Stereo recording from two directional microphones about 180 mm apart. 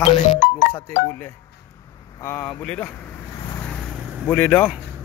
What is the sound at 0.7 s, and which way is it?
Speech, 10° left (ahead or behind).